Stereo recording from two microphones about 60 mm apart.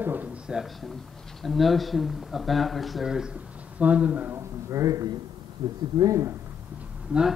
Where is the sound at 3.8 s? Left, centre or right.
Right.